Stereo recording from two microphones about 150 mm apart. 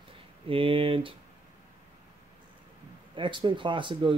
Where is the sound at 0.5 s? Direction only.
40° right (ahead or behind).